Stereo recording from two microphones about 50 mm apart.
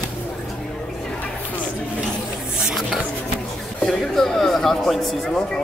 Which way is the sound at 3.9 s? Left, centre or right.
Centre.